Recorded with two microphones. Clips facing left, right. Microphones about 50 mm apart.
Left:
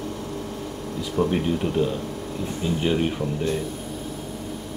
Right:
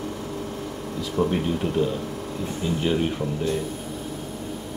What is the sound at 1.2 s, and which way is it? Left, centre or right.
Speech, centre.